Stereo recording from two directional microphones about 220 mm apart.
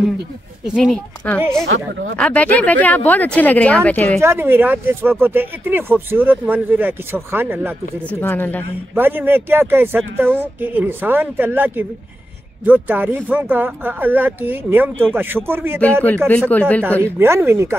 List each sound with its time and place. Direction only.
0.7 s a woman's voice: centre (ahead or behind)
4.2 s speech: 10° right (ahead or behind)
8.2 s speech: 10° left (ahead or behind)
8.9 s speech: 10° right (ahead or behind)
15.8 s speech: 5° left (ahead or behind)
17.0 s speech: 10° right (ahead or behind)